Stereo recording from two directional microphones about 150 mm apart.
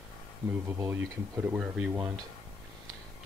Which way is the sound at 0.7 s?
15° right (ahead or behind).